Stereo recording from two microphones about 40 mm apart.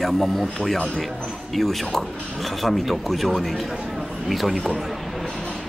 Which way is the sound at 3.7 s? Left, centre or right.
Centre.